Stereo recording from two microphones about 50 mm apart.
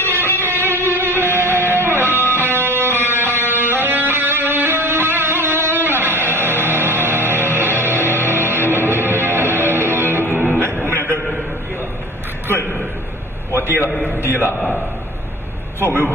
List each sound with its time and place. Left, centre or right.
0.4 s music: right
0.8 s music: right
10.9 s a sound: right
13.5 s a sound: right
14.0 s a man's voice: right
15.8 s speech: right